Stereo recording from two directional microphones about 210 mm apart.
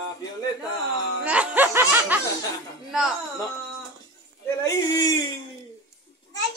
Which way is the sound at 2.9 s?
Centre (ahead or behind).